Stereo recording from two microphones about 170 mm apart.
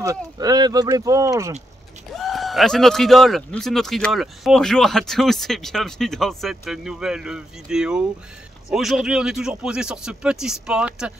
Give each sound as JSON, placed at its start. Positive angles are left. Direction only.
{"t": 0.0, "sound": "speech", "side_deg": -20}
{"t": 2.1, "sound": "speech", "side_deg": 0}